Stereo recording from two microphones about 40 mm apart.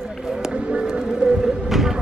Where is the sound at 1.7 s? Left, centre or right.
Centre.